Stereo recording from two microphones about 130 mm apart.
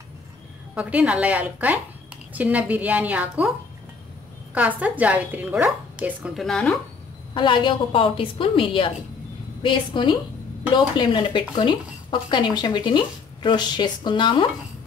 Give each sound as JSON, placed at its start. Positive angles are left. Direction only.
{"t": 0.7, "sound": "a woman's voice", "side_deg": -10}
{"t": 4.6, "sound": "a woman's voice", "side_deg": -10}
{"t": 6.3, "sound": "speech", "side_deg": 5}
{"t": 7.3, "sound": "speech", "side_deg": 40}